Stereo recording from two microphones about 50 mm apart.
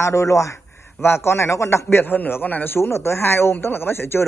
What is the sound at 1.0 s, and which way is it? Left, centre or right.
Speech, left.